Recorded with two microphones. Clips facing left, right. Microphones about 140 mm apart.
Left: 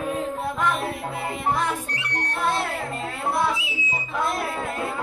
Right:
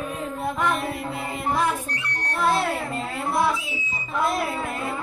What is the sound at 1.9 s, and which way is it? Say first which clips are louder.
Music: left 1 dB; 90° left.